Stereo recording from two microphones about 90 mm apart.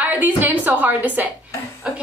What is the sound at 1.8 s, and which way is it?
Music, 10° right (ahead or behind).